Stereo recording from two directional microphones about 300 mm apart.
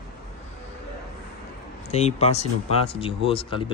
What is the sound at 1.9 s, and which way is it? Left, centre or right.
Speech, left.